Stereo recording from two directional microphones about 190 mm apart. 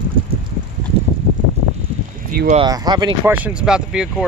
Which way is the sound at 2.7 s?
20° right (ahead or behind).